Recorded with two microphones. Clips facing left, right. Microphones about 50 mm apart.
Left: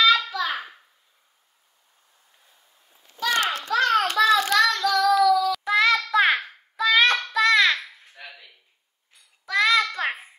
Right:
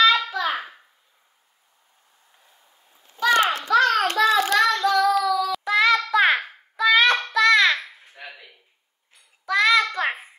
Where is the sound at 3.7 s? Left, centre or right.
Right.